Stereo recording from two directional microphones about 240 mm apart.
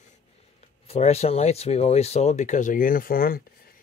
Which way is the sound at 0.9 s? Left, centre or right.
Left.